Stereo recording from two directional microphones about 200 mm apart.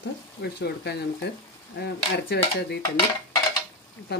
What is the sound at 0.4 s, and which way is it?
Stir, 55° left (ahead or behind).